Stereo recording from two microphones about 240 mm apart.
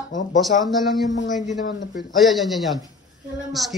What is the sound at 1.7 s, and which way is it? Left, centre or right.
Speech, left.